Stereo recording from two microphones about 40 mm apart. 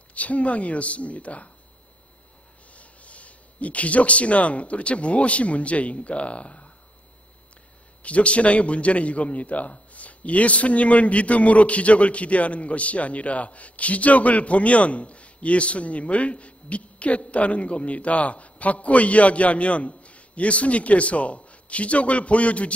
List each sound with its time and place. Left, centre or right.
0.1 s a man's voice: left
2.7 s speech: left
8.0 s a man's voice: left